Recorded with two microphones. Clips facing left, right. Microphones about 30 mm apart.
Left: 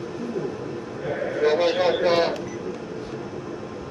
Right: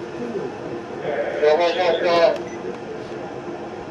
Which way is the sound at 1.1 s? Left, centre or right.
Centre.